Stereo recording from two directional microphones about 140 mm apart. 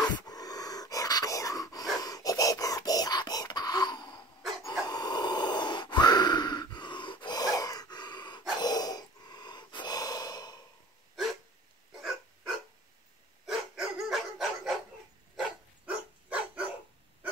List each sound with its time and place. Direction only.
0.3 s a sound: 25° left (ahead or behind)
4.8 s gasp: 30° left (ahead or behind)
11.9 s dog: 5° right (ahead or behind)